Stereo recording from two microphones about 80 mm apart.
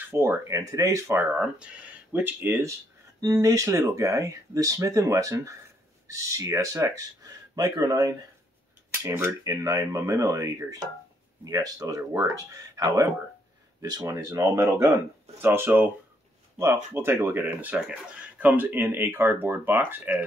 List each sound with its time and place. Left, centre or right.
0.1 s speech: right
1.1 s speech: right
3.2 s speech: right
9.4 s speech: right
14.0 s speech: right
15.4 s speech: right
16.5 s speech: right
17.7 s speech: centre
18.4 s speech: right